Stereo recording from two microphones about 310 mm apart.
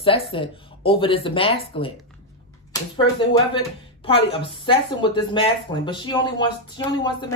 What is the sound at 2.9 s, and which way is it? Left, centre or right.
Speech, centre.